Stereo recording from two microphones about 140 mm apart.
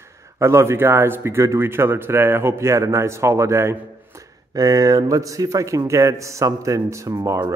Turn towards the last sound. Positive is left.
turn(degrees=-20)  # may be behind; listen again after turning